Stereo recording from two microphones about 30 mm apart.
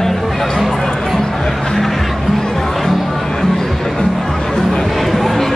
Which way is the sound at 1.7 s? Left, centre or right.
Centre.